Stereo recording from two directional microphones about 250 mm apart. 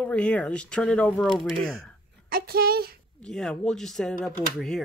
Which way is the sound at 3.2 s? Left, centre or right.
Centre.